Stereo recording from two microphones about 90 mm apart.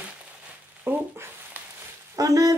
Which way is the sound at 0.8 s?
20° right (ahead or behind).